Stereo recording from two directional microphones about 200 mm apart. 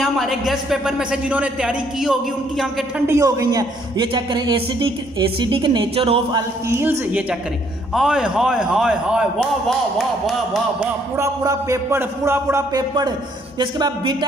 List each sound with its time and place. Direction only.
0.0 s speech: centre (ahead or behind)
3.1 s a woman's voice: 15° right (ahead or behind)
6.7 s a man's voice: 10° right (ahead or behind)
11.1 s a man's voice: 15° right (ahead or behind)